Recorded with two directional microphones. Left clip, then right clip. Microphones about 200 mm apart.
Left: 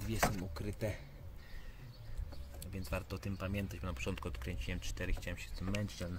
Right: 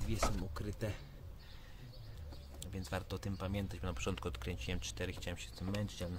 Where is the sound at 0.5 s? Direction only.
10° left (ahead or behind).